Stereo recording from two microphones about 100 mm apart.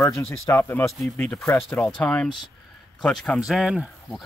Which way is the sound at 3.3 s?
5° right (ahead or behind).